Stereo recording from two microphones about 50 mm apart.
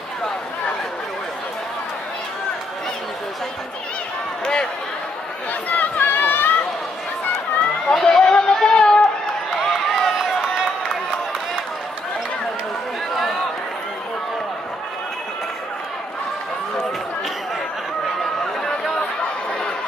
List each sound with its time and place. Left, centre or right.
5.5 s chatter: left
7.9 s music: centre
8.7 s a sound: centre
9.7 s run: centre
18.2 s chatter: centre